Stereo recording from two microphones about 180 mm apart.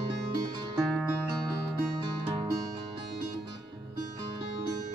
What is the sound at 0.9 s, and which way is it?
Music, centre (ahead or behind).